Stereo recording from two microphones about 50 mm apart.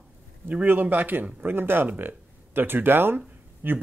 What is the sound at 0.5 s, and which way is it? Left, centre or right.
Speech, right.